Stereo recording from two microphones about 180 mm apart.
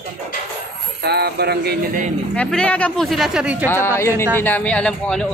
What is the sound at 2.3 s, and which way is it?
Speech, 5° left (ahead or behind).